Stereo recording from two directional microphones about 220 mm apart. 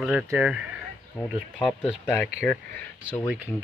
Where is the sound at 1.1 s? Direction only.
10° left (ahead or behind).